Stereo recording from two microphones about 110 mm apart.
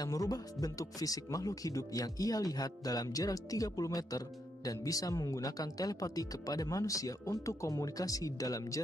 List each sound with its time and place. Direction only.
0.0 s speech: 35° left (ahead or behind)